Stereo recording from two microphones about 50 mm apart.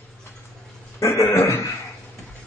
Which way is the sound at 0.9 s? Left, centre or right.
Left.